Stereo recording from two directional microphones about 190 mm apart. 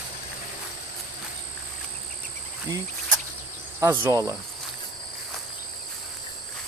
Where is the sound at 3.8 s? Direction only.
15° right (ahead or behind).